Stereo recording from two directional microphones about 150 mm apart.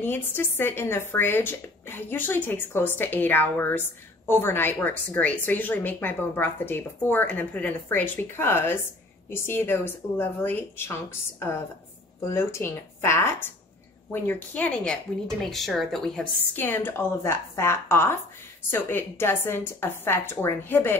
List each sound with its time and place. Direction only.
0.0 s speech: 15° left (ahead or behind)
16.5 s speech: 15° left (ahead or behind)